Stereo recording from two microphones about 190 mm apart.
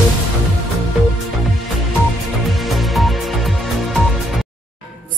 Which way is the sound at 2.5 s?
Centre (ahead or behind).